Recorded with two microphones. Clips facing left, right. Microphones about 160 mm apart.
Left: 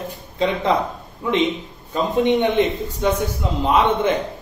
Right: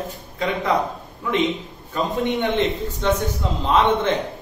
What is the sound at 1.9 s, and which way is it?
A man's voice, 20° left (ahead or behind).